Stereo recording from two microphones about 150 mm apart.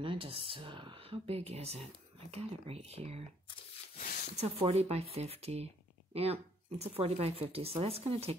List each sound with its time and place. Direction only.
0.0 s speech: 35° right (ahead or behind)
4.4 s speech: 40° right (ahead or behind)